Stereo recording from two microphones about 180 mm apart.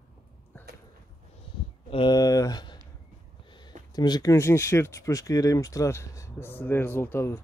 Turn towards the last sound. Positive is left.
turn(degrees=15)  # may be behind; listen again after turning